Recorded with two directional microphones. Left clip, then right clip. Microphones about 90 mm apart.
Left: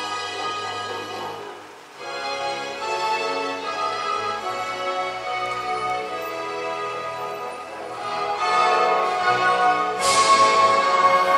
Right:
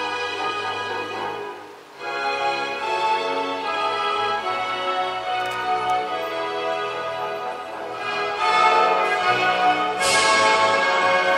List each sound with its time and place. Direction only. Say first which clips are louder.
2.4 s music: right 3 dB; 30° right (ahead or behind)
8.1 s music: right 1 dB; 20° left (ahead or behind)